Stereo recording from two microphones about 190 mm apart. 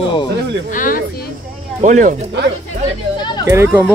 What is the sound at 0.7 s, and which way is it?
Speech, 45° left (ahead or behind).